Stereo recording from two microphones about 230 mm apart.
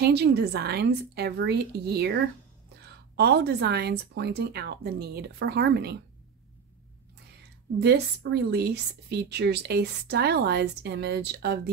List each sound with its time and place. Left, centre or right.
0.0 s a woman's voice: right
7.8 s a woman's voice: right